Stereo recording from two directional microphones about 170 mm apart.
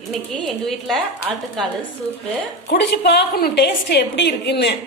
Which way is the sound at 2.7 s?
90° left.